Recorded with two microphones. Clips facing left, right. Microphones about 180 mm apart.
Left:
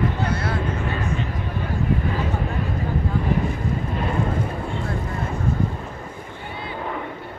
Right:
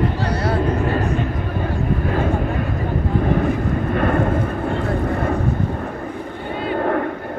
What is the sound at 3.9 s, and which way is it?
Vehicle, 60° right (ahead or behind).